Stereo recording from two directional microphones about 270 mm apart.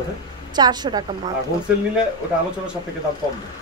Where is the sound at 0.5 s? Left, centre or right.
Centre.